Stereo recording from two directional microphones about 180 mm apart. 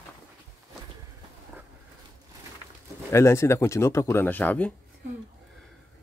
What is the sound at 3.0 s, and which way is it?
Speech, 15° left (ahead or behind).